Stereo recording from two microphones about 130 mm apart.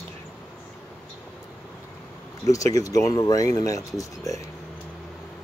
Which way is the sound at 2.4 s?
25° left (ahead or behind).